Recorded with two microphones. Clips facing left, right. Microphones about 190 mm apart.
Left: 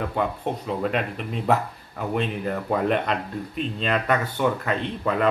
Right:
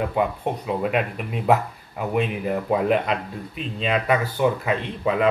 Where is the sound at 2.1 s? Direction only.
5° right (ahead or behind).